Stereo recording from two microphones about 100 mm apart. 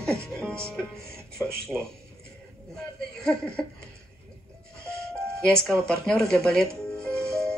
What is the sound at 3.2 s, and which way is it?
Speech, 10° left (ahead or behind).